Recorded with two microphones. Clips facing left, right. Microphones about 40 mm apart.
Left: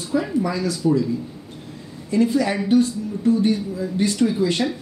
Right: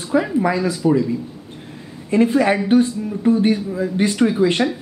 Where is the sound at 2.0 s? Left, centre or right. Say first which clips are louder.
Right 4 dB; right.